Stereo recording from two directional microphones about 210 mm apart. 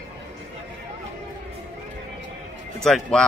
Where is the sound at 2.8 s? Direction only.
Centre (ahead or behind).